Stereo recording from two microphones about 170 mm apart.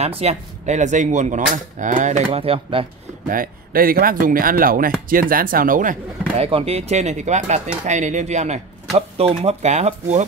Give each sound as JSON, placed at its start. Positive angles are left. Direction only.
{"t": 0.0, "sound": "speech", "side_deg": -35}
{"t": 3.3, "sound": "speech", "side_deg": -55}
{"t": 6.4, "sound": "speech", "side_deg": -35}